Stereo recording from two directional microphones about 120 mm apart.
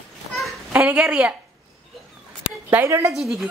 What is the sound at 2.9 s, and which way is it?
Speech, 20° right (ahead or behind).